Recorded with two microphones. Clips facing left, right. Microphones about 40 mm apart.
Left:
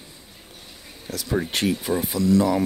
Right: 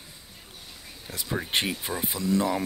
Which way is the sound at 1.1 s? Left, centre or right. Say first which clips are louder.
Left 4 dB; right.